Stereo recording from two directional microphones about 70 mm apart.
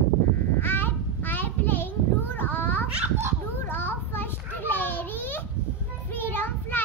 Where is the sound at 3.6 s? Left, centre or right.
Left.